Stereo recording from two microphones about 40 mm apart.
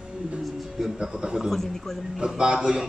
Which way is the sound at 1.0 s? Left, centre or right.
Centre.